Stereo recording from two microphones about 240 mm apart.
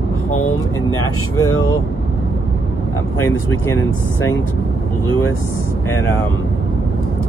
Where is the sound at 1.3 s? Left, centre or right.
Left.